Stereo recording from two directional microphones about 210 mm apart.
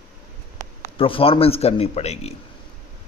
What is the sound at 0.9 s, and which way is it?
Speech, 25° left (ahead or behind).